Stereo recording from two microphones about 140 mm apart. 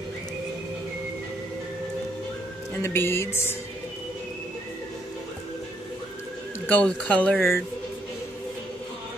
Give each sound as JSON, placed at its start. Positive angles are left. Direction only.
{"t": 2.7, "sound": "speech", "side_deg": 15}
{"t": 6.6, "sound": "speech", "side_deg": 10}
{"t": 7.3, "sound": "speech", "side_deg": 0}